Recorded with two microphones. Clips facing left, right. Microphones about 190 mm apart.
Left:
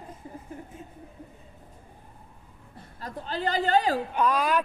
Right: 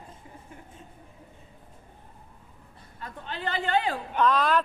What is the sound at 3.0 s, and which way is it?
A woman's voice, 35° left (ahead or behind).